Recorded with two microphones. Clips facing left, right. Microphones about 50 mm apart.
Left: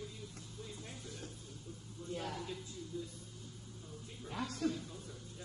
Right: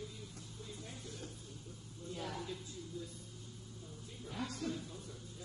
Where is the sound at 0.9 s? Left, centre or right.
Left.